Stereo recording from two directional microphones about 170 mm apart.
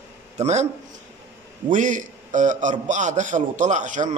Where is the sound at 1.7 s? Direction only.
50° right (ahead or behind).